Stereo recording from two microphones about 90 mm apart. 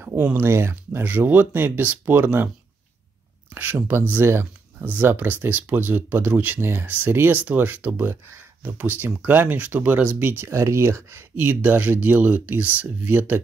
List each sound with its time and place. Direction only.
0.0 s speech: 20° right (ahead or behind)
3.5 s speech: 20° right (ahead or behind)